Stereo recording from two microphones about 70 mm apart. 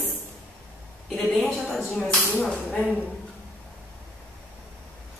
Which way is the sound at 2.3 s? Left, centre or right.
Centre.